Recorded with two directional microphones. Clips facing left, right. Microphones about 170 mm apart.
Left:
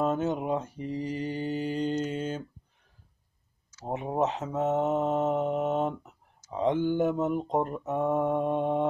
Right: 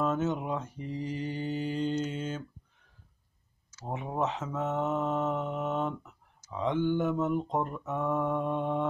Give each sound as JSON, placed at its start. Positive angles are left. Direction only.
{"t": 0.0, "sound": "mantra", "side_deg": 35}
{"t": 3.9, "sound": "mantra", "side_deg": 40}
{"t": 5.3, "sound": "mantra", "side_deg": 20}
{"t": 5.7, "sound": "mantra", "side_deg": 35}
{"t": 7.2, "sound": "speech", "side_deg": 15}
{"t": 7.6, "sound": "mantra", "side_deg": 35}